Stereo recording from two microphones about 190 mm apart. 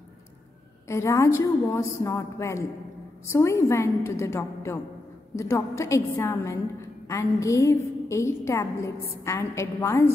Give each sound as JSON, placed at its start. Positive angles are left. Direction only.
{"t": 0.8, "sound": "a woman's voice", "side_deg": 15}